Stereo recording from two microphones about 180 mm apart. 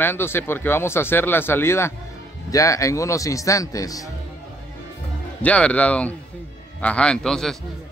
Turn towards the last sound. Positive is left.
turn(degrees=0)  # may be behind; listen again after turning